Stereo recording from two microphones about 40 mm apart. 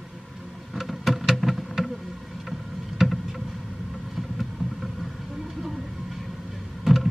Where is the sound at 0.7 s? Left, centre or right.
Centre.